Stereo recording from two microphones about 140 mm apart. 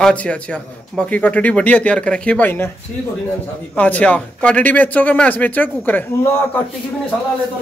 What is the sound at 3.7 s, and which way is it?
A man's voice, 10° left (ahead or behind).